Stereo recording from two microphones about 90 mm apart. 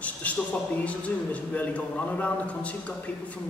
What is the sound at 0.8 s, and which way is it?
A man's voice, 15° left (ahead or behind).